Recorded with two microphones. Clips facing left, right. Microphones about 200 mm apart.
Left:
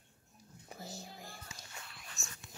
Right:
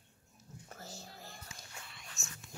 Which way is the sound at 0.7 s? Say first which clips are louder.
Left 3 dB; 15° left (ahead or behind).